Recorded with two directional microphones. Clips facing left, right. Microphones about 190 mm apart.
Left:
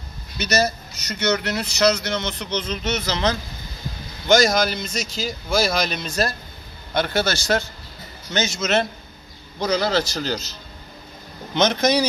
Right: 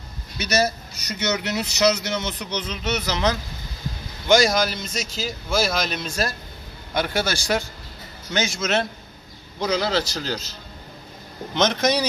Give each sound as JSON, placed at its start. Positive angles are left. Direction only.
{"t": 0.4, "sound": "a man's voice", "side_deg": -5}
{"t": 1.4, "sound": "a man's voice", "side_deg": -20}
{"t": 11.5, "sound": "speech", "side_deg": 0}